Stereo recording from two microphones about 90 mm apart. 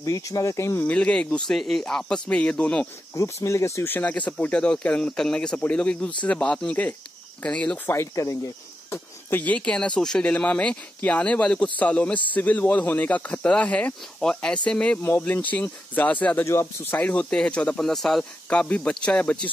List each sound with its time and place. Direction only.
0.0 s speech: 40° left (ahead or behind)
0.8 s speech: 15° left (ahead or behind)
1.5 s speech: 5° left (ahead or behind)
3.2 s speech: 35° left (ahead or behind); by 7.9 s 15° left (ahead or behind)
7.9 s speech: 35° left (ahead or behind)
8.9 s speech: 20° left (ahead or behind)
17.1 s speech: 10° left (ahead or behind)